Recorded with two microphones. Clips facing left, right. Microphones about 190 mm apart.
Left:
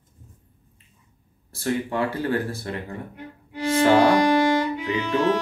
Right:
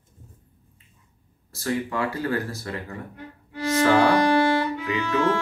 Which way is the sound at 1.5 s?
30° left (ahead or behind).